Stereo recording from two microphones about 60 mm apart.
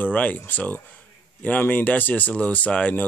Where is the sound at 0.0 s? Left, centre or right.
Left.